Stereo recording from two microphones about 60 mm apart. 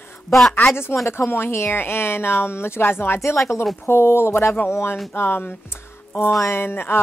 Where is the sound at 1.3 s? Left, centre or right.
Left.